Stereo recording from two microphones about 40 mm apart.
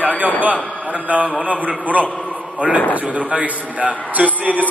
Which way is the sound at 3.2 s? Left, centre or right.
Right.